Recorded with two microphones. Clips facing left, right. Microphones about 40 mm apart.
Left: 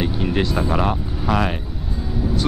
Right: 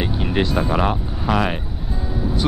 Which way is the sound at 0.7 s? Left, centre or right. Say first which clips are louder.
Right 1 dB; centre.